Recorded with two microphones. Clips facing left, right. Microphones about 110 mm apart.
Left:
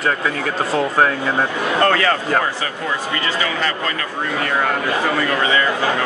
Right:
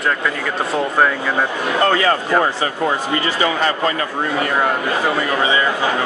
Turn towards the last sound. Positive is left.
turn(degrees=-20)  # may be behind; listen again after turning